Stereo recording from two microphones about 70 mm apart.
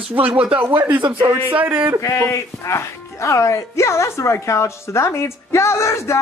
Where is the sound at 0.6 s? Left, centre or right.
Right.